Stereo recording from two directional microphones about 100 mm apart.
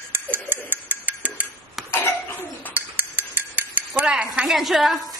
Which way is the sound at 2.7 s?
20° right (ahead or behind).